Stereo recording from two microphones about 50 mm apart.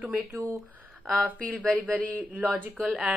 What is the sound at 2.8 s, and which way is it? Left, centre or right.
Speech, right.